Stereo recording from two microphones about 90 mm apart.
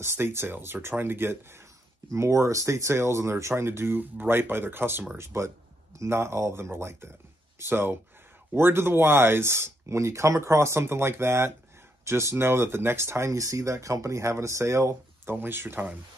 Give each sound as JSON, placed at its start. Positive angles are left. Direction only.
{"t": 0.0, "sound": "speech", "side_deg": -30}